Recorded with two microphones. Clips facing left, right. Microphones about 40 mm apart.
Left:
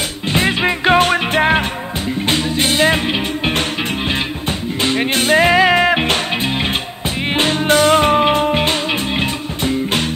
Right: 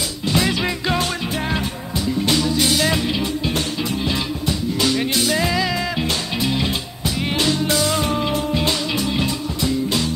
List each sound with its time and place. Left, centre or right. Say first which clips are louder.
0.3 s music: left 4 dB; left